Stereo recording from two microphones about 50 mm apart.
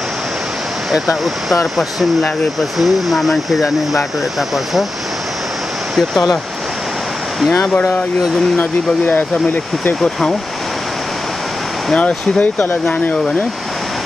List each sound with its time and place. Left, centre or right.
0.9 s speech: centre
5.9 s speech: centre
9.0 s speech: left
12.0 s speech: left